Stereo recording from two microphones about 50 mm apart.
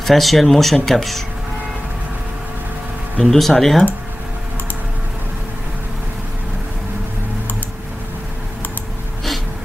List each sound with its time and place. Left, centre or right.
0.0 s speech: centre
3.3 s speech: centre